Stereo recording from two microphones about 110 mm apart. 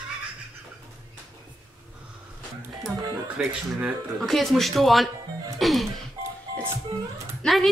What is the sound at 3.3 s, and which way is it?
Speech, 10° right (ahead or behind).